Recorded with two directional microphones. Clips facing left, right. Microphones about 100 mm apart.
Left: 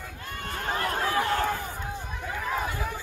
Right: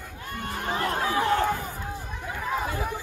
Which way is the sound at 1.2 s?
15° right (ahead or behind).